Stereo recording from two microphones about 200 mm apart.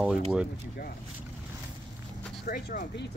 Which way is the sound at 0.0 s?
5° right (ahead or behind).